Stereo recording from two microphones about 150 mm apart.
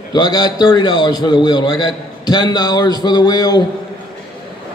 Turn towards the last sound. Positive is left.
turn(degrees=25)  # may be behind; listen again after turning